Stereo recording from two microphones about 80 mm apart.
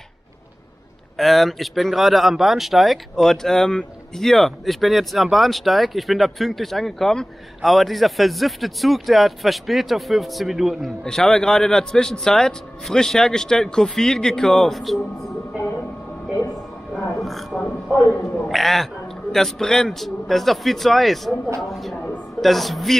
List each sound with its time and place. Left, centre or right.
1.1 s a man's voice: centre
17.2 s a sound: centre
17.9 s a woman's voice: left
18.2 s speech: centre